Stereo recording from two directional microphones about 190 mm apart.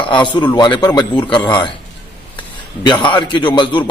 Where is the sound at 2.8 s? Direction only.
25° left (ahead or behind).